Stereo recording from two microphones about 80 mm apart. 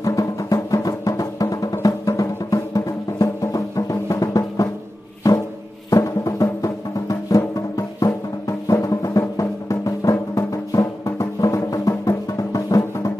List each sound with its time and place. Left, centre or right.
0.0 s music: left
5.9 s music: left